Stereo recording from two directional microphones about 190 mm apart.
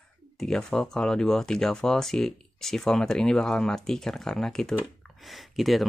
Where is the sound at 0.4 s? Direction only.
5° left (ahead or behind).